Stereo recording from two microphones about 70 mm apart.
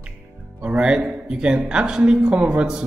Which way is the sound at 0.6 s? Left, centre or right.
Centre.